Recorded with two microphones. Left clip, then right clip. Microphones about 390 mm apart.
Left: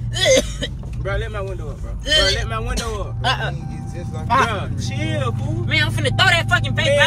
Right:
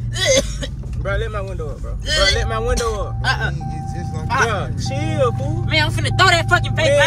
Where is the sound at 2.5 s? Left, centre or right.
Centre.